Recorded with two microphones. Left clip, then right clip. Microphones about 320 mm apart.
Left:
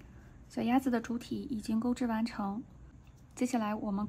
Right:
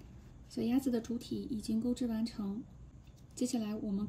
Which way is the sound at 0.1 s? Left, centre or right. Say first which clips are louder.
Left 3 dB; centre.